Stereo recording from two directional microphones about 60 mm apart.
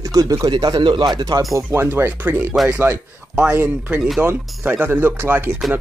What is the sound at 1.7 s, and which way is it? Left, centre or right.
Speech, right.